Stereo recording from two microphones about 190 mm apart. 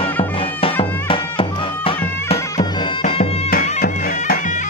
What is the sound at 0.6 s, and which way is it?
Music, 30° left (ahead or behind).